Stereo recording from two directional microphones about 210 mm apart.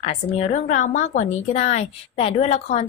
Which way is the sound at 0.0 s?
30° left (ahead or behind).